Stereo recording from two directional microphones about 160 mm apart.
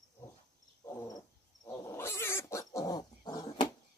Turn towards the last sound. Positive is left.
turn(degrees=25)  # may be behind; listen again after turning